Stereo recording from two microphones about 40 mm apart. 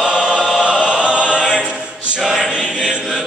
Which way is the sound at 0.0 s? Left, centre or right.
Centre.